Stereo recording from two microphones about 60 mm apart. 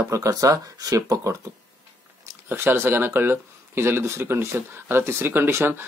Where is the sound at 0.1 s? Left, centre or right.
Right.